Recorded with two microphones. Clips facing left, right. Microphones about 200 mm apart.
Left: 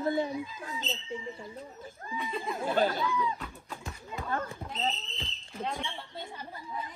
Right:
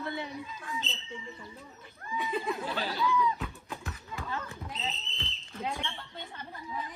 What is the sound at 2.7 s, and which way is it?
Speech, 50° left (ahead or behind).